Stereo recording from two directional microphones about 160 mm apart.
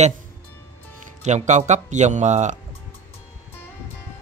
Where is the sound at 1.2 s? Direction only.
50° right (ahead or behind).